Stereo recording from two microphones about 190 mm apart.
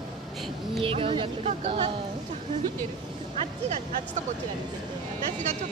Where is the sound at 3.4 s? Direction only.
35° right (ahead or behind).